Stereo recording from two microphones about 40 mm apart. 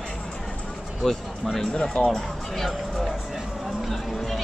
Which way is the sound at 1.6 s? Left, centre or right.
Left.